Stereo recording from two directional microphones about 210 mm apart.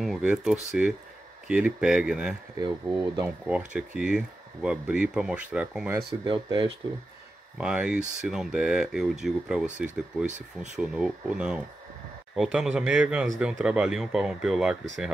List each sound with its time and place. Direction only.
0.0 s speech: 5° right (ahead or behind)
2.5 s speech: 15° right (ahead or behind)
3.4 s speech: 5° right (ahead or behind)
6.2 s speech: 20° right (ahead or behind)
7.5 s speech: 5° right (ahead or behind)
10.2 s speech: 35° right (ahead or behind)
10.8 s speech: 5° right (ahead or behind)